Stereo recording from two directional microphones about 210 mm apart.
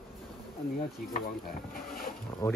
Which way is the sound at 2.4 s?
15° left (ahead or behind).